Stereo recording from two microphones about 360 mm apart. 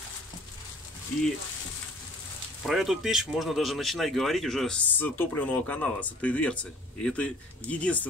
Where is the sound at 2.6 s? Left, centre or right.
Centre.